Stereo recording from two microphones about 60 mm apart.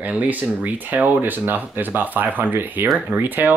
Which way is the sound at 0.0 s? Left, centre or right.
Right.